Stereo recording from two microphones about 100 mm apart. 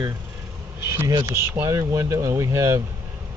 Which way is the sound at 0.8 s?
30° right (ahead or behind).